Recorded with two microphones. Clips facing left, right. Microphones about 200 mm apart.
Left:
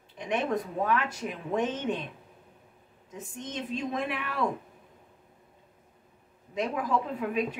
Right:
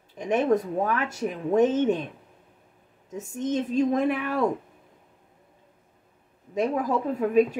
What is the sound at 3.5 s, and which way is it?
Speech, 45° right (ahead or behind).